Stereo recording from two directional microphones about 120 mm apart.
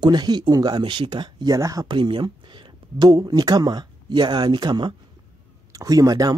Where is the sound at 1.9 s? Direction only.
40° right (ahead or behind).